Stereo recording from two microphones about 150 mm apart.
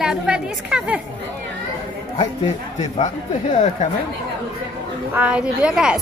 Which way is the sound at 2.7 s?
55° left (ahead or behind).